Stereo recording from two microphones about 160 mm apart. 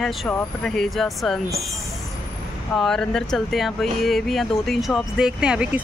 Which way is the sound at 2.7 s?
Centre (ahead or behind).